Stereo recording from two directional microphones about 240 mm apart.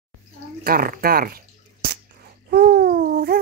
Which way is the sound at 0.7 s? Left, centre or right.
Right.